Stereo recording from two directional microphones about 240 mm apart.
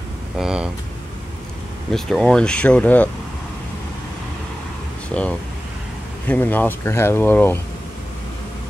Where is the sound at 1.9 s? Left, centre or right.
Centre.